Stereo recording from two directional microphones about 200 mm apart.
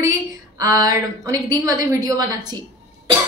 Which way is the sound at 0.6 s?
15° right (ahead or behind).